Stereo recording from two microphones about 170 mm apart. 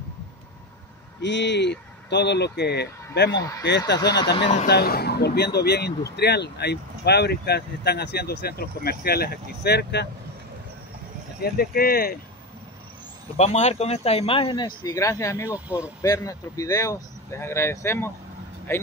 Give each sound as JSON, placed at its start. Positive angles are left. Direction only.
{"t": 1.2, "sound": "speech", "side_deg": 90}
{"t": 3.3, "sound": "speech", "side_deg": 20}
{"t": 4.6, "sound": "speech", "side_deg": 70}
{"t": 11.4, "sound": "speech", "side_deg": 65}
{"t": 13.4, "sound": "speech", "side_deg": 40}
{"t": 14.9, "sound": "speech", "side_deg": 20}
{"t": 15.5, "sound": "speech", "side_deg": -10}
{"t": 16.0, "sound": "speech", "side_deg": 20}